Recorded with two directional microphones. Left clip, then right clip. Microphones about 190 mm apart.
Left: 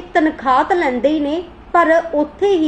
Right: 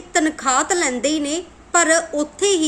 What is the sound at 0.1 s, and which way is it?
A woman's voice, 25° right (ahead or behind).